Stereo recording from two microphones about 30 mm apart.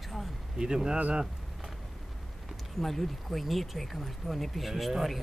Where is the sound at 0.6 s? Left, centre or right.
Right.